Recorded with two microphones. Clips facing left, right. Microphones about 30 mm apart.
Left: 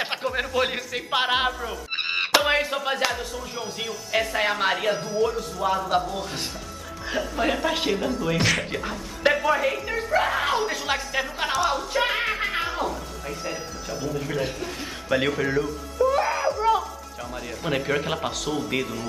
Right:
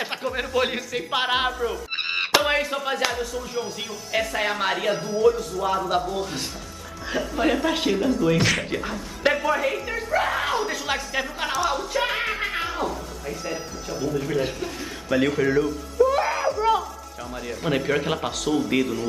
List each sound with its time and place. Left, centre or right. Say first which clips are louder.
0.0 s a sound: left 1 dB; centre
0.3 s speech: right 2 dB; centre
15.1 s music: right 3 dB; centre
17.6 s speech: right 2 dB; centre